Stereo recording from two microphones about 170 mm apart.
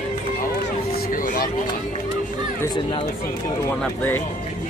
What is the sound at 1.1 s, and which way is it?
Vehicle, 55° left (ahead or behind).